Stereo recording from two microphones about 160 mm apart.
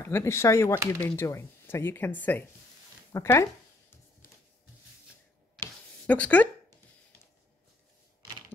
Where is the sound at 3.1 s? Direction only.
15° left (ahead or behind).